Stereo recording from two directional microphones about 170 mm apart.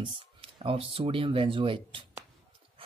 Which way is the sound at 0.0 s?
30° right (ahead or behind).